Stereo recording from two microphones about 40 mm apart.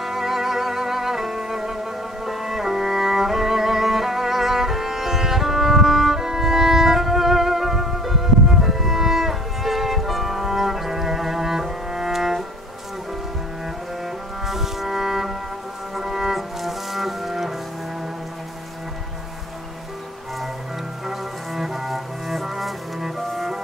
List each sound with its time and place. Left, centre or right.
0.0 s music: centre
14.4 s music: centre
21.1 s cello: centre